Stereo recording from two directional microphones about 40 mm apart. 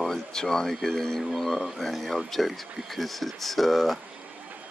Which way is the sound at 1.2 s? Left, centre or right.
Centre.